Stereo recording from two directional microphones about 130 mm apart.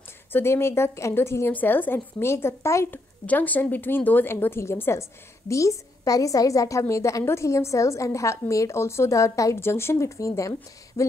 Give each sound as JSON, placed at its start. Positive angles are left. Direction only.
{"t": 0.3, "sound": "a woman's voice", "side_deg": 20}